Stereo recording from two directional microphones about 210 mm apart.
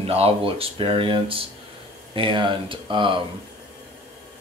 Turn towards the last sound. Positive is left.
turn(degrees=-25)  # may be behind; listen again after turning